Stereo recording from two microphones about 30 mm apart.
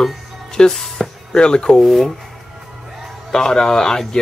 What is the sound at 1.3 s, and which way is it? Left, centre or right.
Speech, left.